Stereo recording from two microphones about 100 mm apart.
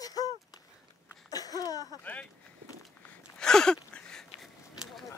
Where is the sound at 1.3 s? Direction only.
40° left (ahead or behind).